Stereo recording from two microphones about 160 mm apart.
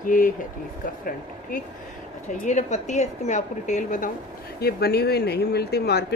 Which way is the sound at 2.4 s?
45° left (ahead or behind).